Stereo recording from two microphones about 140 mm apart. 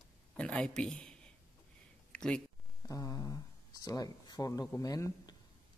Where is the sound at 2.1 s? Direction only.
5° left (ahead or behind).